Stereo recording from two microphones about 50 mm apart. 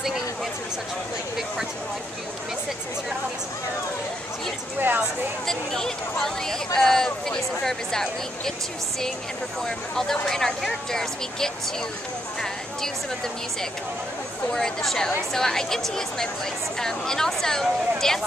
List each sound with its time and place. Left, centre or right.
4.7 s a woman's voice: right
5.5 s speech: centre
9.6 s speech: centre
14.5 s speech: centre